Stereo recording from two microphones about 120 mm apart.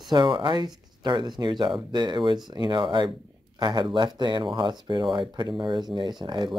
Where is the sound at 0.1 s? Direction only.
40° right (ahead or behind).